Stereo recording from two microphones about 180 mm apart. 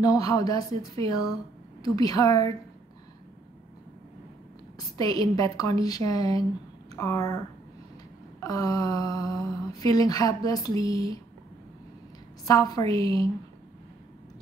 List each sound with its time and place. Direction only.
0.0 s speech: 20° left (ahead or behind)
4.7 s speech: 20° left (ahead or behind)
8.4 s speech: 20° left (ahead or behind)
12.4 s speech: 20° left (ahead or behind)